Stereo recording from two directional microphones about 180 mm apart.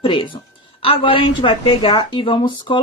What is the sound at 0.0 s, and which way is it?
Speech, 25° left (ahead or behind).